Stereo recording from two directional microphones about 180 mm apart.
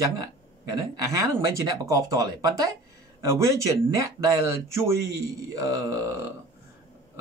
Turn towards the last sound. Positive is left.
turn(degrees=-20)  # may be behind; listen again after turning